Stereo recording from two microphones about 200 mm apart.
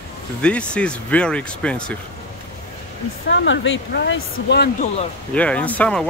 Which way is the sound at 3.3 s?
65° left (ahead or behind).